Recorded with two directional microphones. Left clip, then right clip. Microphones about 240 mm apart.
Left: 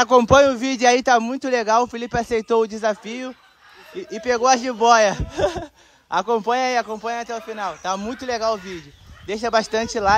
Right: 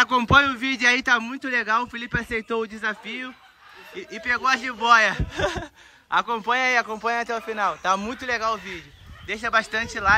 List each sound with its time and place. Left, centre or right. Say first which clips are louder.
0.0 s a man's voice: left 4 dB; left